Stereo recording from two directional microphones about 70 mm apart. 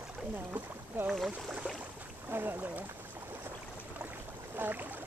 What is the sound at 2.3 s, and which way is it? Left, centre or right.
Speech, right.